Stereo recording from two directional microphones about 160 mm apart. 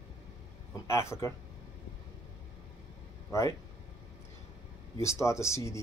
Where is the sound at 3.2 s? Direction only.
20° left (ahead or behind).